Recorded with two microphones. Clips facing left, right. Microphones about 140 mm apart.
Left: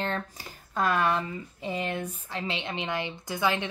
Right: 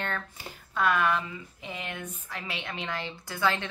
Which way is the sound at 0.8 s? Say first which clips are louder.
Even; 35° left (ahead or behind).